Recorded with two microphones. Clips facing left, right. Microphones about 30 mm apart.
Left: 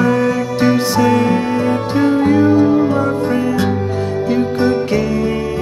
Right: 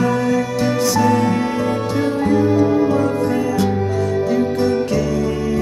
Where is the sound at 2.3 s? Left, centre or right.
Left.